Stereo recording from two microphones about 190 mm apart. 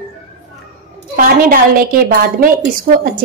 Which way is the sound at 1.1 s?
50° right (ahead or behind).